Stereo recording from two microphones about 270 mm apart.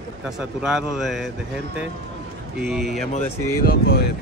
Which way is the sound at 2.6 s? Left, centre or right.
Centre.